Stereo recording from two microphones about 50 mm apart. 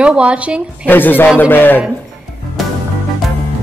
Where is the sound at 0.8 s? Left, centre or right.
Left.